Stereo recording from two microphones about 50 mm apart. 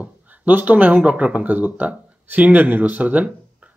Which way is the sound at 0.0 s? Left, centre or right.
Right.